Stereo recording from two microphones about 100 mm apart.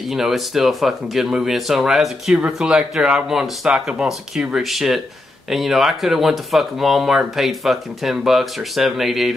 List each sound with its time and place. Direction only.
0.1 s speech: centre (ahead or behind)